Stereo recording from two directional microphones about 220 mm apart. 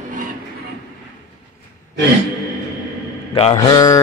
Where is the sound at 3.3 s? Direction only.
25° left (ahead or behind).